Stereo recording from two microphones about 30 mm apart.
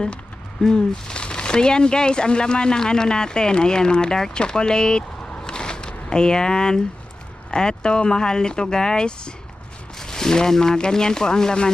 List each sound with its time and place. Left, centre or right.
0.6 s speech: left
5.4 s a sound: left
7.5 s speech: left